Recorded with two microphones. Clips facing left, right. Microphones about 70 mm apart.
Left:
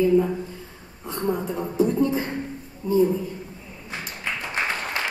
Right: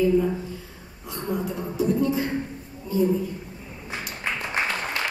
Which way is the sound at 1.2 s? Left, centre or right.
Left.